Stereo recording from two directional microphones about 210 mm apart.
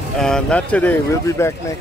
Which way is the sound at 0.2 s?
5° left (ahead or behind).